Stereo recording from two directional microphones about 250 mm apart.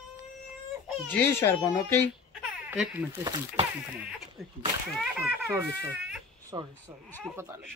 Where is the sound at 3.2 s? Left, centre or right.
Centre.